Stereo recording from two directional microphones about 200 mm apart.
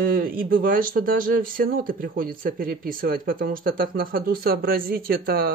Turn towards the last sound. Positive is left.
turn(degrees=-50)  # may be behind; listen again after turning